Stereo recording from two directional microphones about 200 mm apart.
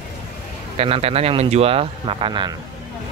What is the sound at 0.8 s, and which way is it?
Speech, 30° right (ahead or behind).